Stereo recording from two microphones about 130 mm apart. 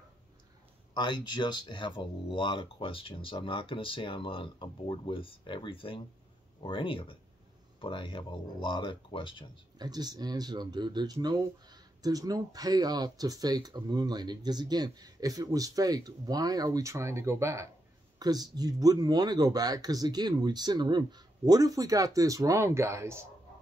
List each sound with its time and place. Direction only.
0.9 s speech: 35° left (ahead or behind)
9.8 s speech: 30° right (ahead or behind)